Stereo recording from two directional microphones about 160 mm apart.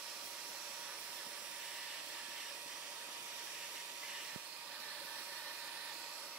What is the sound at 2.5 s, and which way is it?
Hair dryer, 5° right (ahead or behind).